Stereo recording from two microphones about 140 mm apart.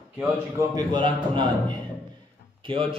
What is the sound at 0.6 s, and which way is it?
Speech, 30° right (ahead or behind).